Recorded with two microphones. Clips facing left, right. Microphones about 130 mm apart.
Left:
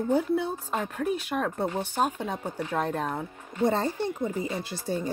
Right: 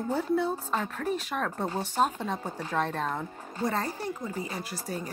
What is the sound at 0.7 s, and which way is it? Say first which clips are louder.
Speech: left 2 dB; 10° left (ahead or behind).